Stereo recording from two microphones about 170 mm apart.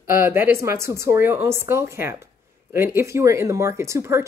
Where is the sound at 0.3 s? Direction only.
15° right (ahead or behind).